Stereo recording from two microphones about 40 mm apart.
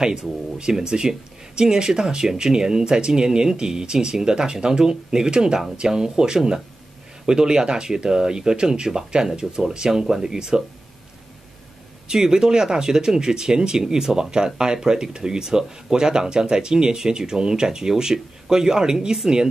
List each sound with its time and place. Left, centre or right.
0.0 s speech: centre
12.1 s speech: centre